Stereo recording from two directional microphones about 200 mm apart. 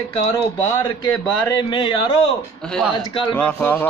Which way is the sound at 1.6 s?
25° left (ahead or behind).